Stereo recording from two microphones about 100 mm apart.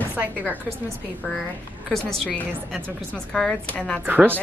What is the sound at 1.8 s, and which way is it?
Speech, 5° left (ahead or behind).